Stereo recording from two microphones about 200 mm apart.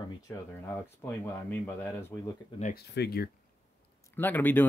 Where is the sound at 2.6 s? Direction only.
40° left (ahead or behind).